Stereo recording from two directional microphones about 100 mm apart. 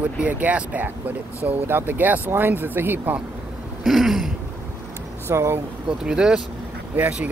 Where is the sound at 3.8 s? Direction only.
Centre (ahead or behind).